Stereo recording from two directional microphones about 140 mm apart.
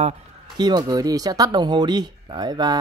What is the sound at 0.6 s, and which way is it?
Speech, 30° right (ahead or behind).